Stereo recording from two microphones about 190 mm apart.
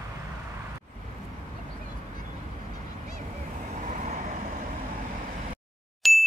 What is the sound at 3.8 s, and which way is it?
Vehicle, 40° right (ahead or behind).